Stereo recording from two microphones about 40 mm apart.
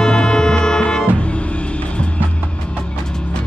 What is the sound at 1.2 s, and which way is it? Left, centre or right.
Music, left.